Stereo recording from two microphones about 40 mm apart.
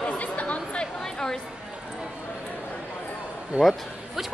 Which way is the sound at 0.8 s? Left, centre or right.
Centre.